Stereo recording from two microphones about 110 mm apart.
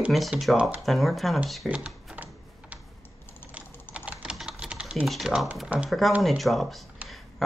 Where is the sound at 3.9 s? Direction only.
10° right (ahead or behind).